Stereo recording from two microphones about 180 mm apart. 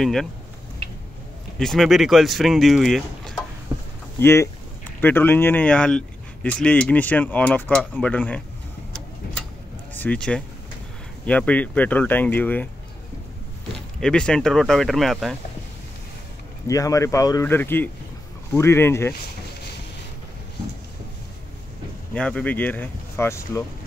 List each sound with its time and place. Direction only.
0.0 s speech: centre (ahead or behind)
1.6 s speech: centre (ahead or behind)
3.7 s a sound: 15° right (ahead or behind)
4.2 s speech: 15° left (ahead or behind)
9.9 s speech: 5° left (ahead or behind)
13.9 s speech: 5° left (ahead or behind)
16.6 s speech: 20° left (ahead or behind)
22.1 s speech: 5° left (ahead or behind)